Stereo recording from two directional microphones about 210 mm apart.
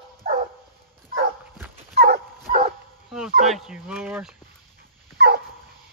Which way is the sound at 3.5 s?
5° right (ahead or behind).